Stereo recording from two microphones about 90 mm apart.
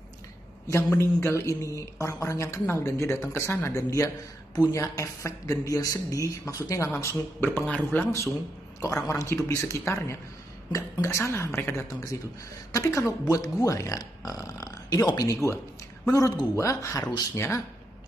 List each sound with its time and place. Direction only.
0.9 s speech: 30° left (ahead or behind); by 8.0 s 15° left (ahead or behind)
8.0 s speech: 30° left (ahead or behind)